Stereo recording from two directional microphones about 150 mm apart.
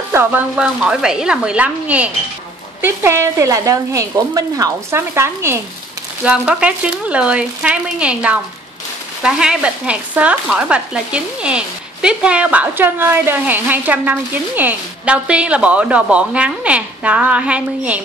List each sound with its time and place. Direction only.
0.1 s sizzle: 15° right (ahead or behind)
2.8 s speech: 15° right (ahead or behind)
6.2 s sizzle: 5° right (ahead or behind)